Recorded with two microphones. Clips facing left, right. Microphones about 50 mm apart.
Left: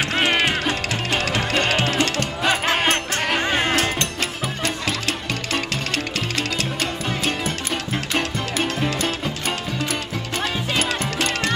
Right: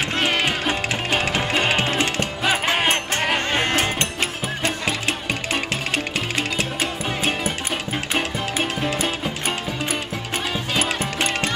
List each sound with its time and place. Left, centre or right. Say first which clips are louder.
0.2 s music: left 2 dB; centre
0.5 s music: even; centre
2.4 s music: left 1 dB; centre
7.1 s music: right 1 dB; centre
10.8 s music: even; centre